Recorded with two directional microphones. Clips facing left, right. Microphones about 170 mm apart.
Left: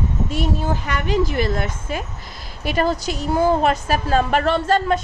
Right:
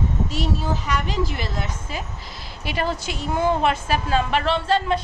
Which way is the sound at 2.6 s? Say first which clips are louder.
Left 5 dB; 45° left (ahead or behind).